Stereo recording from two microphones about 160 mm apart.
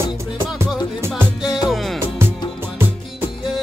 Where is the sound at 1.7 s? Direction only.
Centre (ahead or behind).